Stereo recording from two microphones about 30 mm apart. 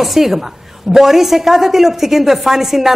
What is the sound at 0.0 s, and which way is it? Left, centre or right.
A woman's voice, centre.